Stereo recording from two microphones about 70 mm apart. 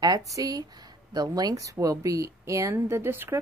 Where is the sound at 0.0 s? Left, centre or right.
Right.